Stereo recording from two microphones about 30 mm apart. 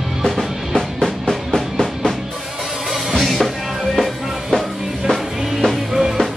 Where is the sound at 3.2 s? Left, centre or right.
Centre.